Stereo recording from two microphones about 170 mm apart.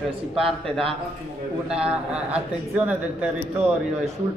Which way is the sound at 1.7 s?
5° right (ahead or behind).